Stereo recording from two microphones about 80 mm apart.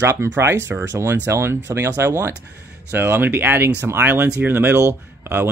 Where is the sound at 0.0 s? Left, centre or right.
Right.